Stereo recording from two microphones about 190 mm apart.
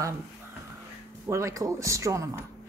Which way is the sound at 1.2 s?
15° right (ahead or behind).